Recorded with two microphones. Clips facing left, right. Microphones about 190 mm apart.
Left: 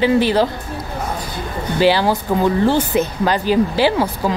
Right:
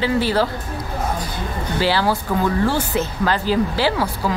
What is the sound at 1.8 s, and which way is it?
Speech, 20° left (ahead or behind).